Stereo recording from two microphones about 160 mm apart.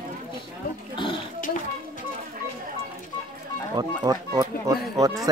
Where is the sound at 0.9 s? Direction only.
30° left (ahead or behind).